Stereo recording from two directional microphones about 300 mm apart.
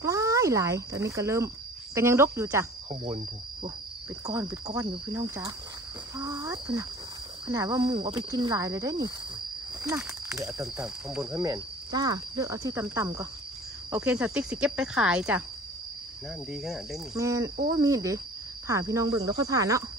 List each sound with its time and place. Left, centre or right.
0.0 s speech: centre
2.9 s speech: centre
4.3 s speech: centre
16.5 s speech: centre